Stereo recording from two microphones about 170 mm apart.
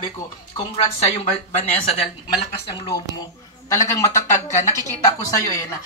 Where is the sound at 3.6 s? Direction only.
20° left (ahead or behind).